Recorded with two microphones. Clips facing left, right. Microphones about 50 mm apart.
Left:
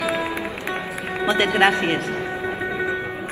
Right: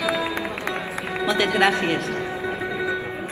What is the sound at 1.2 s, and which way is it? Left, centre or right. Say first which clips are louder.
Speech: left 2 dB; left.